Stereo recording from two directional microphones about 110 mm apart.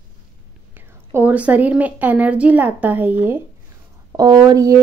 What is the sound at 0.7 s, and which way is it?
A woman's voice, 15° right (ahead or behind).